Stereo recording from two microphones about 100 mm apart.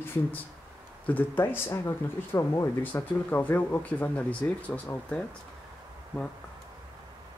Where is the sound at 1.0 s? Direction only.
15° left (ahead or behind).